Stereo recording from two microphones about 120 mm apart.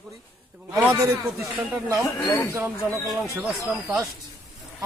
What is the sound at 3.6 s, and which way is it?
Speech, 25° right (ahead or behind).